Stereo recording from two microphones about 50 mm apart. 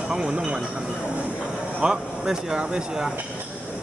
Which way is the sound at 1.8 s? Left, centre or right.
Centre.